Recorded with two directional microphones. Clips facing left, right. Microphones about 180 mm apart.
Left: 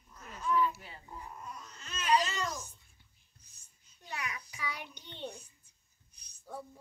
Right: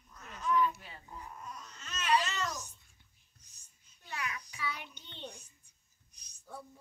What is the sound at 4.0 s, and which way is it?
Child singing, 15° left (ahead or behind).